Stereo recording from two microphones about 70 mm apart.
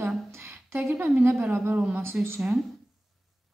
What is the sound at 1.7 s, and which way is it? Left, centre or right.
Speech, centre.